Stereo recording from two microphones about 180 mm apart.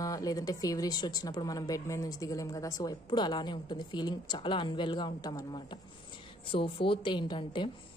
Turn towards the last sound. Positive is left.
turn(degrees=25)  # may be behind; listen again after turning